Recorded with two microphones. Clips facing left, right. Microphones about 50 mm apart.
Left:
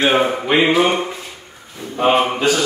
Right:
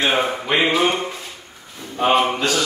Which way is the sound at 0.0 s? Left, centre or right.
Centre.